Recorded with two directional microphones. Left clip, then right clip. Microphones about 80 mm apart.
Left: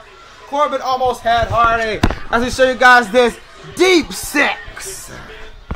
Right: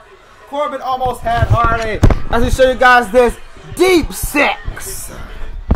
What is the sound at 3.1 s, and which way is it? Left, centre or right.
A man's voice, centre.